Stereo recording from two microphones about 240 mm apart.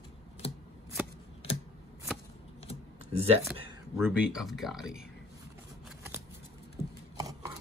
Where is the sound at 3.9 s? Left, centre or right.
Centre.